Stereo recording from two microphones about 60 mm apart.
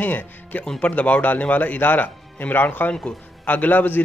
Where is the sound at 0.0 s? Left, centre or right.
Left.